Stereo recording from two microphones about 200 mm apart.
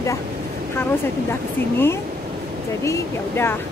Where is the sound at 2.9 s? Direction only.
10° left (ahead or behind).